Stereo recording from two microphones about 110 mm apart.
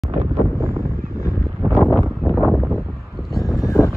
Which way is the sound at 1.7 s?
Centre (ahead or behind).